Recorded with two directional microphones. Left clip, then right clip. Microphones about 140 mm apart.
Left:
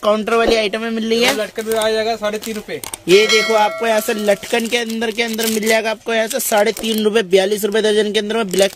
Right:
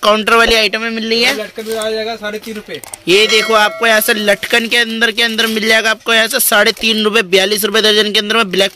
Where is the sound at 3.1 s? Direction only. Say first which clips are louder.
Right 2 dB; centre (ahead or behind).